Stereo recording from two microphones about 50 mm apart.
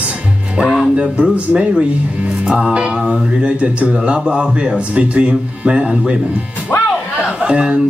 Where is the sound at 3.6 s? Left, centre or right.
Right.